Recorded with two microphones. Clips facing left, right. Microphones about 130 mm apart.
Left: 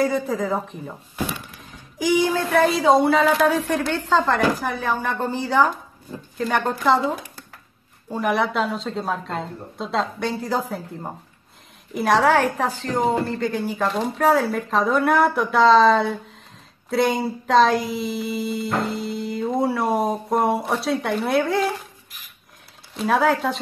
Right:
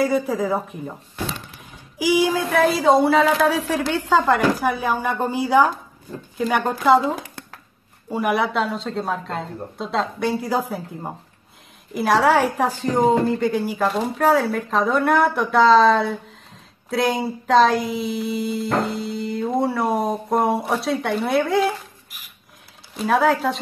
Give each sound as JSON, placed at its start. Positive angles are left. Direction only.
{"t": 0.0, "sound": "speech", "side_deg": -5}
{"t": 2.0, "sound": "speech", "side_deg": -5}
{"t": 7.2, "sound": "a sound", "side_deg": -90}
{"t": 8.1, "sound": "speech", "side_deg": -5}
{"t": 22.9, "sound": "speech", "side_deg": 0}